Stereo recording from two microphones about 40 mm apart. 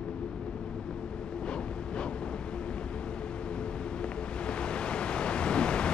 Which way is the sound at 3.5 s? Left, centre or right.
Left.